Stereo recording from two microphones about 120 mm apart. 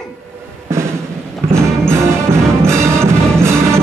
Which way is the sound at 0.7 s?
20° right (ahead or behind).